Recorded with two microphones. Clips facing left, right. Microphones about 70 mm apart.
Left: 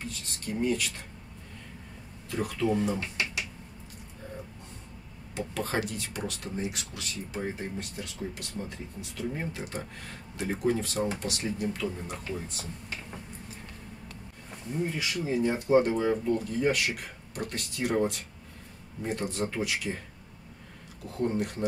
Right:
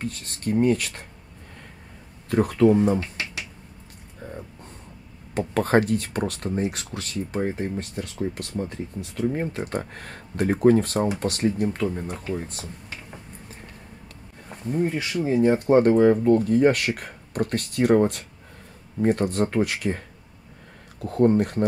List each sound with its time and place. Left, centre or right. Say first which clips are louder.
0.0 s speech: right 8 dB; right
2.3 s speech: right 11 dB; right
2.7 s speech: right 8 dB; right
5.5 s speech: right 12 dB; right
14.7 s speech: right 7 dB; right
15.5 s speech: right 6 dB; right
21.0 s speech: right 10 dB; right